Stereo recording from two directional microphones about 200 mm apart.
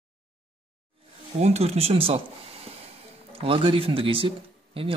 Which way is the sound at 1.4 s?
30° right (ahead or behind).